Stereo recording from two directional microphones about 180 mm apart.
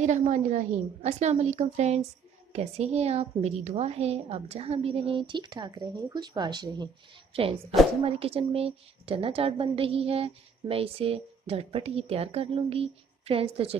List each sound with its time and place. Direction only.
0.0 s a woman's voice: 40° right (ahead or behind); by 6.9 s 25° right (ahead or behind)
8.0 s a woman's voice: 30° right (ahead or behind)